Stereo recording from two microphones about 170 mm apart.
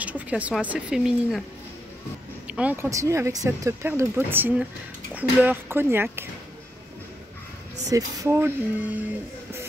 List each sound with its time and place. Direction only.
0.0 s speech: 10° right (ahead or behind)
2.4 s speech: 5° right (ahead or behind)
7.9 s speech: 20° right (ahead or behind)